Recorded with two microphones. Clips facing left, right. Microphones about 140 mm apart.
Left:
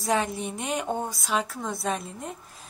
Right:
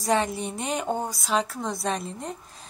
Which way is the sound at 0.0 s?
Centre (ahead or behind).